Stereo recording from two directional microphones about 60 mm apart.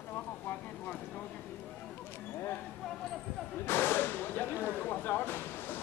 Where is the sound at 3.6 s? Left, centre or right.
Left.